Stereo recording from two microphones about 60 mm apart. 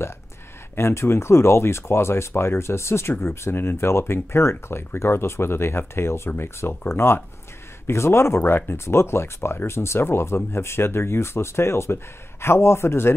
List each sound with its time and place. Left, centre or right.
0.7 s speech: left